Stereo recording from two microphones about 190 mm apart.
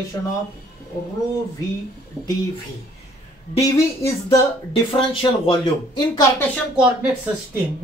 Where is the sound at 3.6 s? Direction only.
15° left (ahead or behind).